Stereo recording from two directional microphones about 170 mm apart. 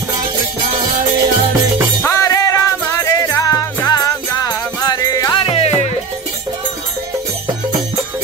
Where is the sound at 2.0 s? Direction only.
20° left (ahead or behind); by 5.9 s 35° left (ahead or behind).